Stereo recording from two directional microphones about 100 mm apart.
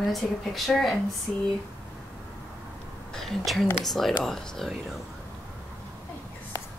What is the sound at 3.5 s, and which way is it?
A woman's voice, centre (ahead or behind).